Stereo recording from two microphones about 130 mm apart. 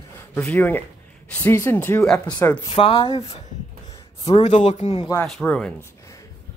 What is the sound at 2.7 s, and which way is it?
Speech, 45° left (ahead or behind).